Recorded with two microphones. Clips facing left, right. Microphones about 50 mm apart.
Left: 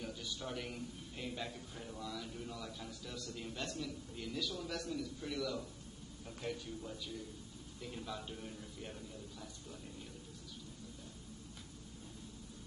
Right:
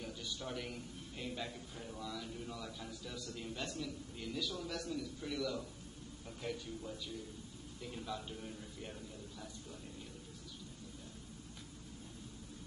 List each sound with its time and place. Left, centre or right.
0.0 s a man's voice: centre